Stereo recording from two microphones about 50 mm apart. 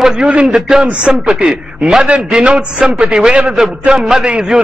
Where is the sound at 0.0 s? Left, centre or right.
Centre.